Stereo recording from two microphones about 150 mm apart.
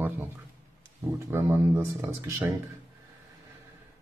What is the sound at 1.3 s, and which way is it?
Speech, 15° right (ahead or behind).